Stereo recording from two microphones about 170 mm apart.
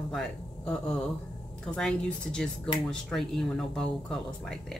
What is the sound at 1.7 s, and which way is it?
Speech, 5° left (ahead or behind).